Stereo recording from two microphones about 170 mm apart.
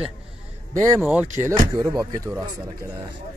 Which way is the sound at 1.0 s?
10° right (ahead or behind).